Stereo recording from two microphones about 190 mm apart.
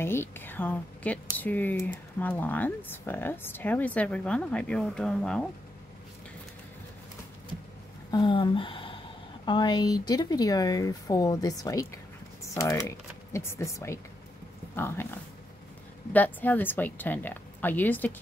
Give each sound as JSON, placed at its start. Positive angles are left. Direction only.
{"t": 0.0, "sound": "speech", "side_deg": 10}
{"t": 8.1, "sound": "speech", "side_deg": 25}